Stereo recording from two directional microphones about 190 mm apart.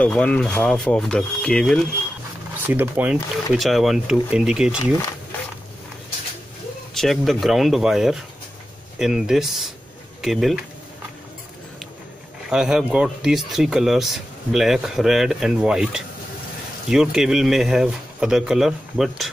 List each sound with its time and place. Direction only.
0.0 s speech: 5° left (ahead or behind)
2.5 s speech: 10° right (ahead or behind)
6.9 s speech: centre (ahead or behind)
12.4 s speech: 5° right (ahead or behind)